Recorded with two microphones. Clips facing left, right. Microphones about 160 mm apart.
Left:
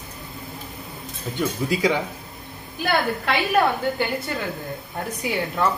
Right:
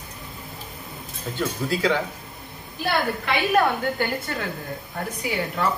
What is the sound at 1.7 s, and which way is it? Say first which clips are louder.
Speech: left 1 dB; 15° left (ahead or behind).